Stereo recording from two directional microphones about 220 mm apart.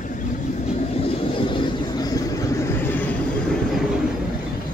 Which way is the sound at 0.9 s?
25° left (ahead or behind).